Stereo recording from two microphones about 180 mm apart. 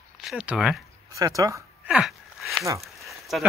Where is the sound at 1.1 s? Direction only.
20° right (ahead or behind).